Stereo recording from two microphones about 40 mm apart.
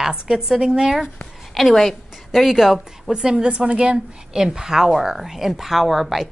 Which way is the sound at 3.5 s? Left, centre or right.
Right.